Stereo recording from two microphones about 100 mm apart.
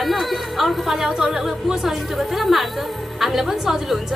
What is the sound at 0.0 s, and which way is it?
A woman's voice, centre (ahead or behind).